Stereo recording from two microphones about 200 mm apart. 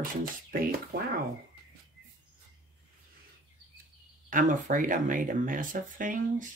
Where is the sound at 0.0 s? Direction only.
45° right (ahead or behind).